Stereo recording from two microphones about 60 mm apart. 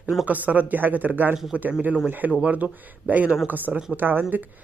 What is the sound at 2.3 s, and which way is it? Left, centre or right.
Speech, centre.